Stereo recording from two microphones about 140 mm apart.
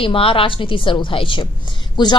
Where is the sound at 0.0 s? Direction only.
40° left (ahead or behind).